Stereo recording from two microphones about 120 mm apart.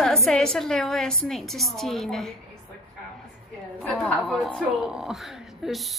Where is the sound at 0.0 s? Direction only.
5° left (ahead or behind).